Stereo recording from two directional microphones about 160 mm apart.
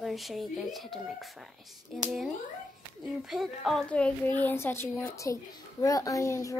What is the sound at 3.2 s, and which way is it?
A woman's voice, centre (ahead or behind).